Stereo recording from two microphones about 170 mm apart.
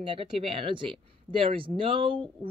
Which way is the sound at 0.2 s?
30° right (ahead or behind).